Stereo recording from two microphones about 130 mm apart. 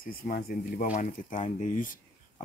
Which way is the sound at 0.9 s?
75° left (ahead or behind).